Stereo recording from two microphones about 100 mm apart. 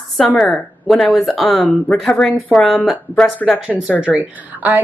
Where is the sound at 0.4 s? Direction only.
Centre (ahead or behind).